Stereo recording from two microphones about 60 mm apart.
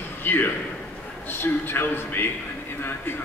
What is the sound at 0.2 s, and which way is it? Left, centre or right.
A man's voice, left.